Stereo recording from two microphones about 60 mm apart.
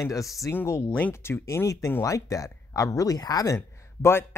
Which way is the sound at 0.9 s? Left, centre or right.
Left.